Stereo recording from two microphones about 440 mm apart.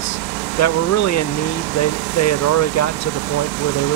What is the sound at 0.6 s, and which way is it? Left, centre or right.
Speech, left.